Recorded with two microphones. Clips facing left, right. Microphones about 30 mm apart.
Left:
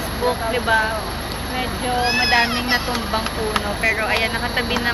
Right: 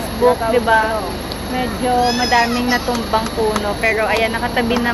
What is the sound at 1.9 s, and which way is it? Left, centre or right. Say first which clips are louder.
Speech: right 2 dB; left.